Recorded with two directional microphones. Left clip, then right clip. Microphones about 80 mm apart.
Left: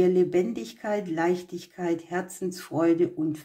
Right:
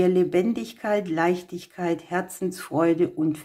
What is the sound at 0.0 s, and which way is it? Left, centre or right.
Speech, right.